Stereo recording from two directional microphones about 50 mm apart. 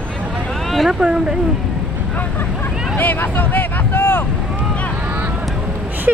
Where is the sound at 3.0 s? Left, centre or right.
Left.